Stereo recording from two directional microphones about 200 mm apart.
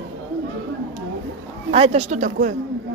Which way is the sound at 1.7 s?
30° right (ahead or behind).